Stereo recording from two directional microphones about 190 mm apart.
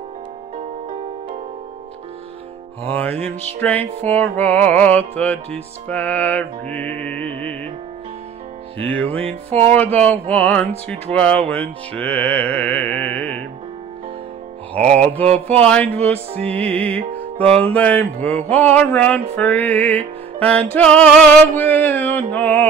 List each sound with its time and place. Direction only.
2.9 s music: 10° left (ahead or behind)
8.8 s music: 10° left (ahead or behind)
14.8 s music: 35° right (ahead or behind)
15.4 s music: 5° left (ahead or behind)